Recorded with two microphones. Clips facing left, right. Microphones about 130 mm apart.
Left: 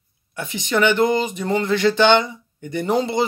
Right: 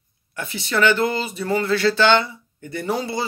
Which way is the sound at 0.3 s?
15° left (ahead or behind).